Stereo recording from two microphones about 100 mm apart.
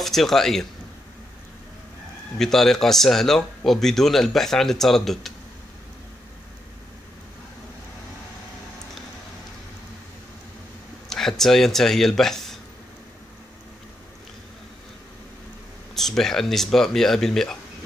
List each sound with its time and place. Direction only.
0.0 s speech: centre (ahead or behind)
2.3 s speech: 5° left (ahead or behind)
11.1 s speech: 5° left (ahead or behind)
15.9 s speech: 5° left (ahead or behind)